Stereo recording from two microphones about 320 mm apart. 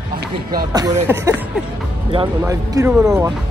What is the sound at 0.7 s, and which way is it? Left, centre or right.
Speech, centre.